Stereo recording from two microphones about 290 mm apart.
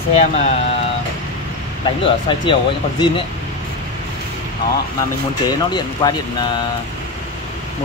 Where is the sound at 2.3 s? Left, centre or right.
Centre.